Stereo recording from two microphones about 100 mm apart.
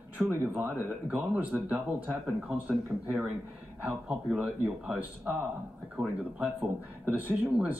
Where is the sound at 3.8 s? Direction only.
15° right (ahead or behind).